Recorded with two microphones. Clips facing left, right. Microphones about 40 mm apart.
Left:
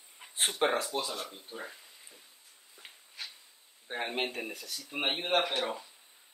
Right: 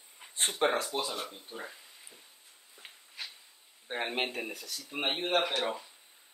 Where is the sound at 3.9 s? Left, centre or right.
Centre.